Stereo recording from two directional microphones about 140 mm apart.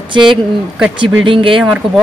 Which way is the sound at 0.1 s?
35° right (ahead or behind).